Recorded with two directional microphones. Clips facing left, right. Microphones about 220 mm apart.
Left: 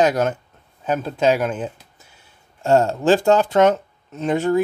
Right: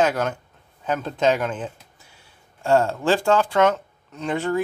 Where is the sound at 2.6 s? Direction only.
20° left (ahead or behind).